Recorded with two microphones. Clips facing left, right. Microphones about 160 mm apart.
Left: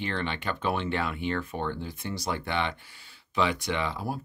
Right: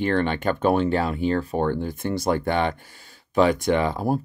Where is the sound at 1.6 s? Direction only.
50° right (ahead or behind).